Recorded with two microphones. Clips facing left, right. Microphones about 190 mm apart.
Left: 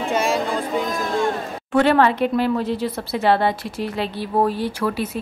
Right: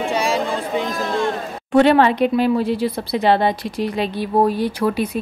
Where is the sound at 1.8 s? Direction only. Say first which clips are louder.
Right 3 dB; 20° right (ahead or behind).